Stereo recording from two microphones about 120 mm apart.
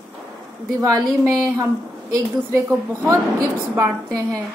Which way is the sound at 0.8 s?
30° right (ahead or behind).